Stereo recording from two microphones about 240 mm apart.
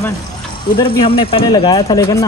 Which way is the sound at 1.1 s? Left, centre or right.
Left.